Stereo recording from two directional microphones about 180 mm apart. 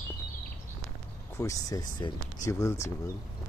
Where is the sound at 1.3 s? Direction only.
20° left (ahead or behind).